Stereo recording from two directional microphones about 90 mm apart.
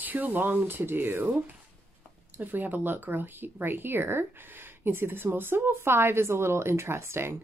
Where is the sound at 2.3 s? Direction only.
20° right (ahead or behind).